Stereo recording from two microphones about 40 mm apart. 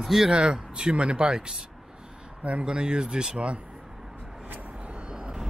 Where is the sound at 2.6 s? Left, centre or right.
Right.